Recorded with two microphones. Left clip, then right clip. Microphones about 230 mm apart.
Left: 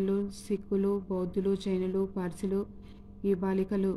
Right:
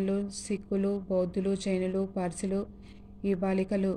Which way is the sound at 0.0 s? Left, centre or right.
Centre.